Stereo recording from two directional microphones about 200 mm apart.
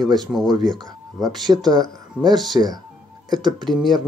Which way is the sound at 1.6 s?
20° right (ahead or behind).